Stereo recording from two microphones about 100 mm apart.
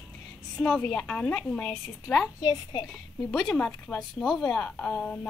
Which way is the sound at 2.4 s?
40° left (ahead or behind).